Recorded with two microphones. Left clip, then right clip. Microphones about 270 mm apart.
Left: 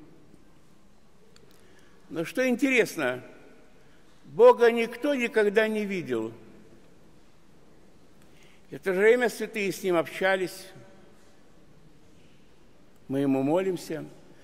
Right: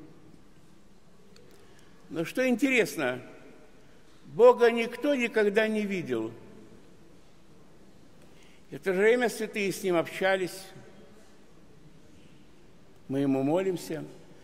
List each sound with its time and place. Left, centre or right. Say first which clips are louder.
2.1 s a man's voice: left 1 dB; centre
4.4 s a man's voice: left 2 dB; centre
8.6 s a man's voice: left 2 dB; centre
13.1 s a man's voice: left 2 dB; centre